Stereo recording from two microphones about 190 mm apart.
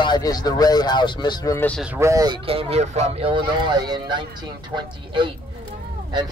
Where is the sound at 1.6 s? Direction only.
Centre (ahead or behind).